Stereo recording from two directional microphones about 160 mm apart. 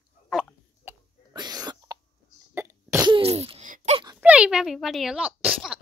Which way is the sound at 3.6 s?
55° right (ahead or behind).